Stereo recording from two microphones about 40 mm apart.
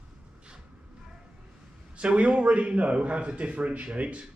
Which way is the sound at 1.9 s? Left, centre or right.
Right.